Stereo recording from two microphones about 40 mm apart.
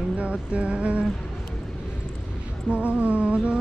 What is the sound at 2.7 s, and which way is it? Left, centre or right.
Music, right.